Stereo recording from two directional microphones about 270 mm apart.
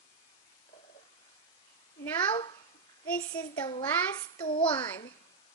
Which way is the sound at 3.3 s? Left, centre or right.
Centre.